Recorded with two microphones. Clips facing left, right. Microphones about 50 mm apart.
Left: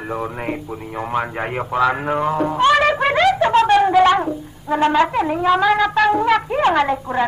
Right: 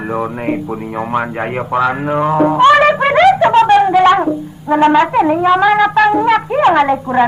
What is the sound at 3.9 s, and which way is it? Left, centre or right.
Brass instrument, right.